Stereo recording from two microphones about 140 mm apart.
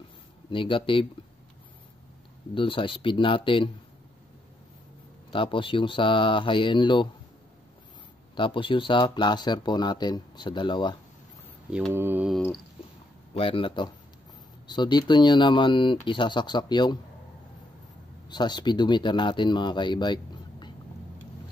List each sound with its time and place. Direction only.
0.5 s speech: 40° left (ahead or behind)
2.5 s speech: 35° left (ahead or behind)
5.3 s speech: 35° left (ahead or behind)
8.4 s speech: 35° left (ahead or behind)
11.9 s mantra: 15° right (ahead or behind)
13.3 s speech: 40° left (ahead or behind)
18.3 s speech: 30° left (ahead or behind)